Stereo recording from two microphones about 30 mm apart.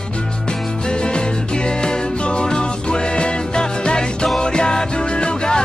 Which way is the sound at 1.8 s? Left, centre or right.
Left.